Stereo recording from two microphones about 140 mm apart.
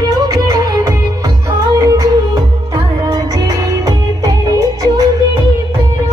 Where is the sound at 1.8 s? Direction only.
25° right (ahead or behind).